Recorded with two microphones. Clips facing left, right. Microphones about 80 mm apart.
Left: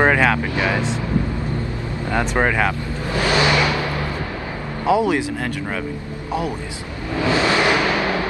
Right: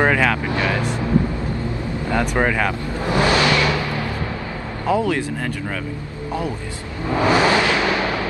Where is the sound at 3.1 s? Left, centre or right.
Right.